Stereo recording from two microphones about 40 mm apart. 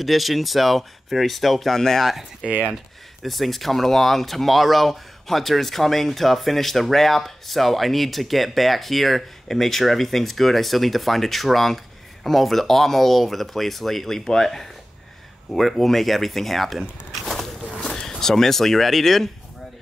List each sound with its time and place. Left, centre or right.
0.0 s speech: centre
2.4 s speech: right
3.2 s speech: centre
17.2 s walk: centre
17.8 s speech: centre